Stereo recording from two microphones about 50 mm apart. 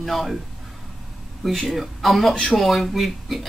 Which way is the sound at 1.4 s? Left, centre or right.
Centre.